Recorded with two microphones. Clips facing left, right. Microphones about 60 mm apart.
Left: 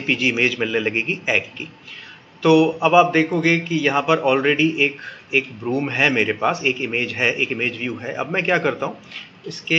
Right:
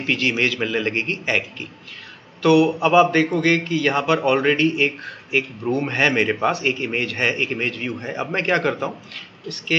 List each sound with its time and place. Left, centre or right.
0.0 s a man's voice: centre